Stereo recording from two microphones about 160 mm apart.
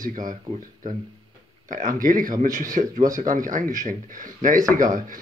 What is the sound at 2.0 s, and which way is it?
A man's voice, 60° right (ahead or behind).